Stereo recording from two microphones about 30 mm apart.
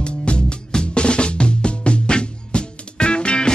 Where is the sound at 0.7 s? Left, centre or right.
Left.